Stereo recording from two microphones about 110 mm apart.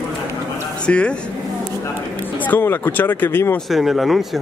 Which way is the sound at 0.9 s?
10° left (ahead or behind).